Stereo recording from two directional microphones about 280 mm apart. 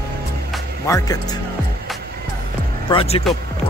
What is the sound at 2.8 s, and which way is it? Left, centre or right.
Speech, centre.